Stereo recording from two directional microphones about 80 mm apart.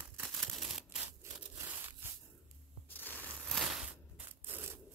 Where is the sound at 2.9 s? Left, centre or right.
Left.